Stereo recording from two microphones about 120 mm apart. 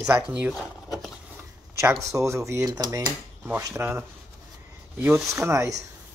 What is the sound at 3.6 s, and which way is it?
Speech, 20° right (ahead or behind).